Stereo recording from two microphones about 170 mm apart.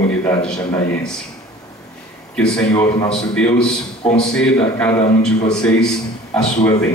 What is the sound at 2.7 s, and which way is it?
Speech, 20° left (ahead or behind).